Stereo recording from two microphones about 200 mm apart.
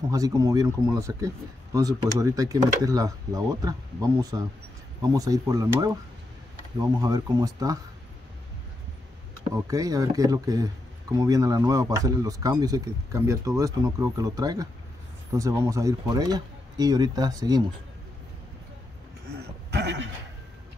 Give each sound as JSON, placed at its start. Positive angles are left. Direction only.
{"t": 0.1, "sound": "speech", "side_deg": -15}
{"t": 7.0, "sound": "speech", "side_deg": -20}
{"t": 9.5, "sound": "speech", "side_deg": -15}
{"t": 19.7, "sound": "neigh", "side_deg": -60}